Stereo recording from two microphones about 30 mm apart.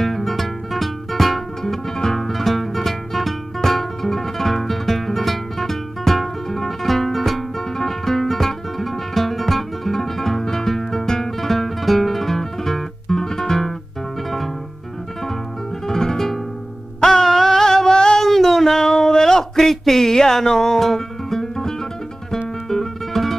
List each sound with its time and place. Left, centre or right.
0.0 s music: centre
1.6 s music: centre
15.9 s music: centre
18.2 s a sound: centre
22.7 s music: centre